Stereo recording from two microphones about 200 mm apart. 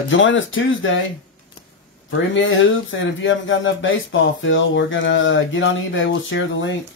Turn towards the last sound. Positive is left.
turn(degrees=70)  # may be behind; listen again after turning